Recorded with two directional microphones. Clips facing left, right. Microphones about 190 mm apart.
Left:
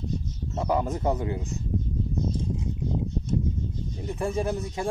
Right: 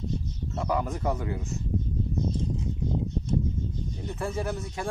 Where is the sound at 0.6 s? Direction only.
25° left (ahead or behind).